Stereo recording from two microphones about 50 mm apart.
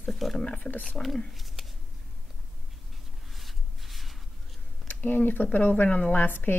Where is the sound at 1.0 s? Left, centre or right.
Centre.